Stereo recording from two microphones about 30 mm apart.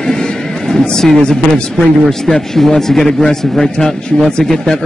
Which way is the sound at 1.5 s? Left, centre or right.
Centre.